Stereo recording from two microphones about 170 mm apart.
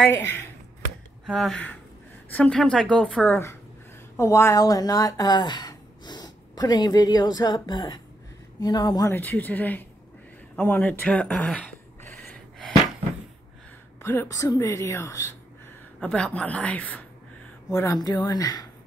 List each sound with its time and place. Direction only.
0.0 s a woman's voice: 15° left (ahead or behind)
1.2 s a woman's voice: centre (ahead or behind); by 9.1 s 25° left (ahead or behind)
9.1 s a woman's voice: 10° left (ahead or behind)
10.5 s a sound: 10° left (ahead or behind)
14.0 s a woman's voice: 15° left (ahead or behind)
16.0 s a woman's voice: 5° left (ahead or behind); by 18.7 s 25° left (ahead or behind)